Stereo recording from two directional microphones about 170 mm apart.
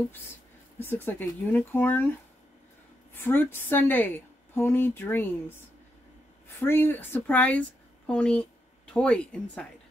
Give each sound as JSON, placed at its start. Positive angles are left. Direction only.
{"t": 0.7, "sound": "speech", "side_deg": 10}
{"t": 3.2, "sound": "speech", "side_deg": 10}